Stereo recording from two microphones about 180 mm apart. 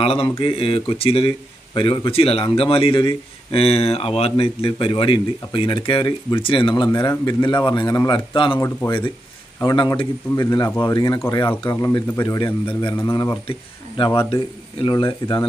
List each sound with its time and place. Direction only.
0.0 s a man's voice: 35° left (ahead or behind); by 13.4 s 15° left (ahead or behind)
13.5 s a man's voice: 30° left (ahead or behind)